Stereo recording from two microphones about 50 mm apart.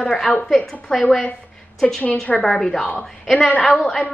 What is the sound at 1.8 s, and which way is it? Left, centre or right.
A woman's voice, centre.